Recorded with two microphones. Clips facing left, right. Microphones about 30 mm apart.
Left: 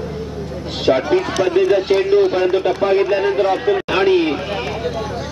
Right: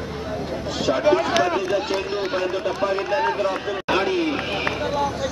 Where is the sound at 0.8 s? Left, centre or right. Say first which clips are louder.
Left 3 dB; left.